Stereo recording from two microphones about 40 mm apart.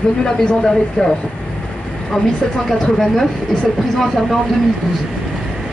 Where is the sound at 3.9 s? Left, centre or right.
Centre.